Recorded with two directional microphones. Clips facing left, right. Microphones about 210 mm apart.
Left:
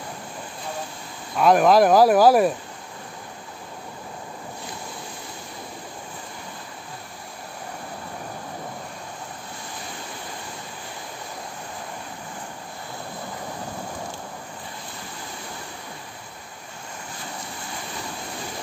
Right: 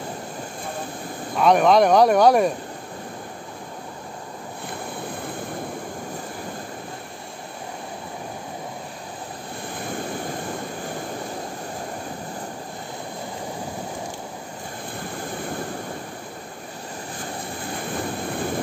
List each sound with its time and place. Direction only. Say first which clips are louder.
1.3 s speech: even; centre (ahead or behind)
4.6 s waves: right 5 dB; 55° right (ahead or behind)
17.9 s vehicle: right 10 dB; 55° right (ahead or behind)